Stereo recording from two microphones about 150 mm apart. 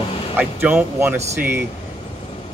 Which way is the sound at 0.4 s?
10° right (ahead or behind).